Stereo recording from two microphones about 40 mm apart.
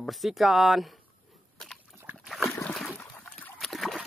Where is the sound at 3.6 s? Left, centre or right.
Centre.